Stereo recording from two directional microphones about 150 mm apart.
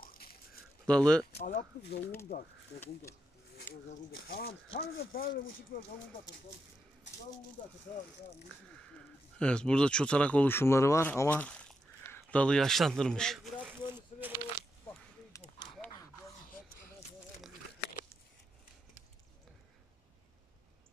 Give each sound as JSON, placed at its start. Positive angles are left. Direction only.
{"t": 0.0, "sound": "a sound", "side_deg": 80}
{"t": 0.8, "sound": "speech", "side_deg": 5}
{"t": 1.4, "sound": "speech", "side_deg": 75}
{"t": 4.7, "sound": "speech", "side_deg": 85}
{"t": 9.4, "sound": "speech", "side_deg": 5}
{"t": 13.6, "sound": "speech", "side_deg": -10}
{"t": 15.8, "sound": "a sound", "side_deg": 10}